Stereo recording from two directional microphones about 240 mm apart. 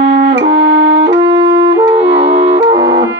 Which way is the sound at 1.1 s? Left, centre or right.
Centre.